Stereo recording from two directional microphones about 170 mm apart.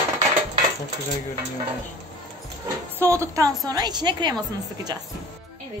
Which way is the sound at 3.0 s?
15° right (ahead or behind).